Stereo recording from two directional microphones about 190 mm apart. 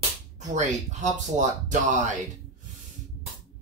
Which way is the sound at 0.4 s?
40° right (ahead or behind).